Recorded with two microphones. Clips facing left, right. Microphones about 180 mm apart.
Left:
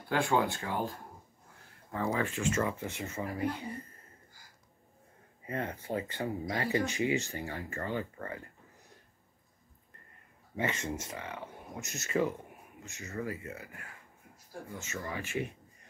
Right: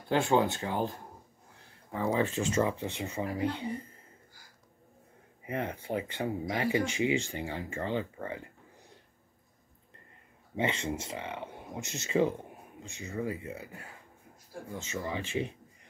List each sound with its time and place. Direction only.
0.1 s speech: 20° right (ahead or behind)
5.5 s speech: 15° right (ahead or behind)
10.5 s speech: 25° right (ahead or behind)
15.0 s speech: 25° right (ahead or behind)